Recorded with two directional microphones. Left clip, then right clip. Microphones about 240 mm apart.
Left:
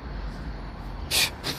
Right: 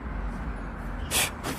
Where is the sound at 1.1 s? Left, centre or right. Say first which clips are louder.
Left 3 dB; centre.